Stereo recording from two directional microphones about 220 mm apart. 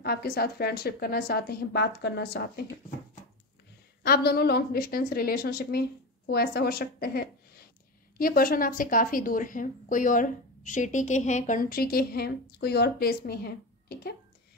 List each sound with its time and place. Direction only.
0.0 s a woman's voice: 45° left (ahead or behind)
4.0 s a woman's voice: 45° left (ahead or behind)